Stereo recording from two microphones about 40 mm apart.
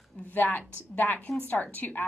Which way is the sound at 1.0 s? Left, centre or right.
Left.